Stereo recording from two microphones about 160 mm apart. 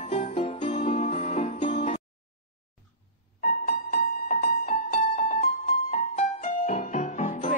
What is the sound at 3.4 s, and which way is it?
Music, 60° left (ahead or behind).